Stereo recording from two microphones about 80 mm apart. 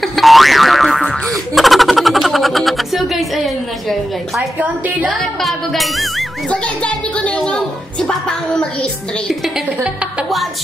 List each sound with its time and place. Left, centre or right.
0.0 s boing: centre
4.6 s a woman's voice: centre
5.4 s speech: centre
6.5 s a sound: centre
9.4 s music: centre